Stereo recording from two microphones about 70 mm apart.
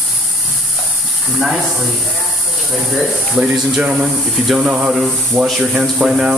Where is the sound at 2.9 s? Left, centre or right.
Centre.